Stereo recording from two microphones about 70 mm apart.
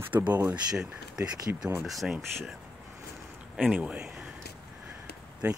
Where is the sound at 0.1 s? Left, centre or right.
Right.